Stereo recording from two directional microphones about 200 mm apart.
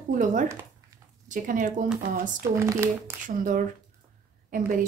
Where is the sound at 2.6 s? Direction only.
15° right (ahead or behind).